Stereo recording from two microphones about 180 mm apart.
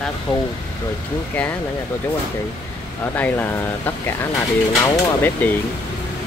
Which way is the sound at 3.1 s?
10° left (ahead or behind).